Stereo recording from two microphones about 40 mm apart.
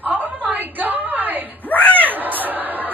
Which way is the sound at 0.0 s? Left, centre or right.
Right.